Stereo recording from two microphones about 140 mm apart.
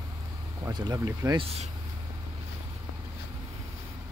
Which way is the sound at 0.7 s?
25° right (ahead or behind).